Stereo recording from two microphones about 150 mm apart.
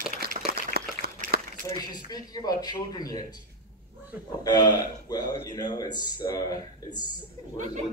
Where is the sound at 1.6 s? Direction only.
25° left (ahead or behind).